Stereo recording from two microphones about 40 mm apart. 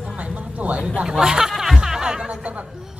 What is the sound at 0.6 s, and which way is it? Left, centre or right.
Speech, right.